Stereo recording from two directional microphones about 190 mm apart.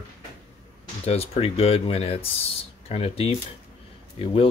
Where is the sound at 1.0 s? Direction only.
30° left (ahead or behind).